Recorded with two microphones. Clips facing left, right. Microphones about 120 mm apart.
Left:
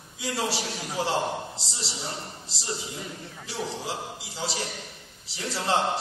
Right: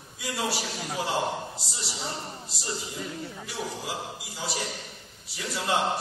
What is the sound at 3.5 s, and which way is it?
A man's voice, 30° left (ahead or behind).